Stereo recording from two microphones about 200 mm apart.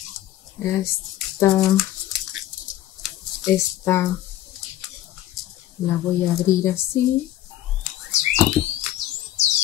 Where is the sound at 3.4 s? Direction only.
10° left (ahead or behind).